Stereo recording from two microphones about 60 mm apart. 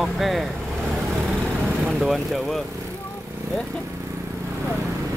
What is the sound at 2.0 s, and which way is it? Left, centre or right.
Speech, centre.